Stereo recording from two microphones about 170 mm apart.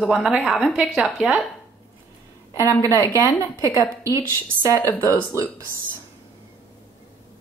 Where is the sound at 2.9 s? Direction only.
15° left (ahead or behind).